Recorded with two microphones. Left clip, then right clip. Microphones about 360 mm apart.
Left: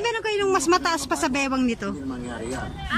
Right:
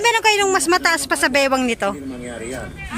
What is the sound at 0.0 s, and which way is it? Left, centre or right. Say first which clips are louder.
A woman's voice: right 8 dB; centre.